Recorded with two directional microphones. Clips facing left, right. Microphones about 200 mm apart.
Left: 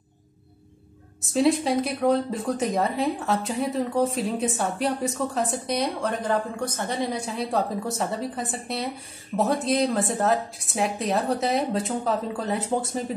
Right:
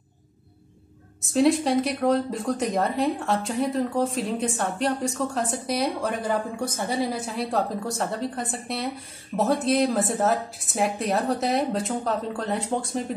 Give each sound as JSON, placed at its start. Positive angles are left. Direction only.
{"t": 1.2, "sound": "speech", "side_deg": 0}